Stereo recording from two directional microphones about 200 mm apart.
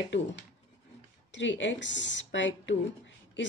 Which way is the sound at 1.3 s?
65° left (ahead or behind).